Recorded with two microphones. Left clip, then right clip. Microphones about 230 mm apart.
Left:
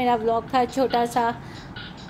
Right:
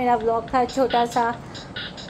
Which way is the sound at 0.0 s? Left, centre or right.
Centre.